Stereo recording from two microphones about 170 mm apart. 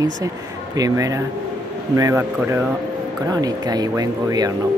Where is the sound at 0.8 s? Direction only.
20° right (ahead or behind).